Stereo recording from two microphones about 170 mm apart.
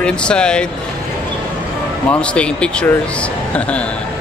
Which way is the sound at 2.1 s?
5° left (ahead or behind).